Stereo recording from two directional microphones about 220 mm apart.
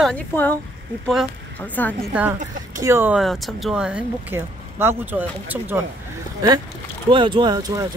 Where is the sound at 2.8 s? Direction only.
10° right (ahead or behind).